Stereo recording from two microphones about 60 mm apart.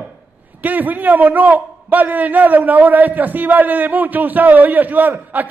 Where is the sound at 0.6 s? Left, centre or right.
Right.